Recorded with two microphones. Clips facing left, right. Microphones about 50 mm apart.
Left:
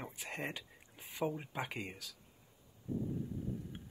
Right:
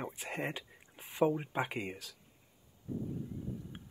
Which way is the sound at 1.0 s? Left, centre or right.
Right.